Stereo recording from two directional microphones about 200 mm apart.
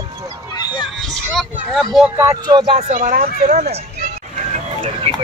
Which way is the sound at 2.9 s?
45° right (ahead or behind).